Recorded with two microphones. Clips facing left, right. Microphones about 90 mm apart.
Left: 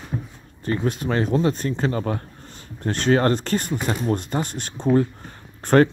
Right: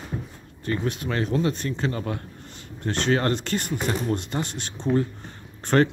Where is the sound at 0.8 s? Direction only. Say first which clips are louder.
Left 6 dB; 40° left (ahead or behind).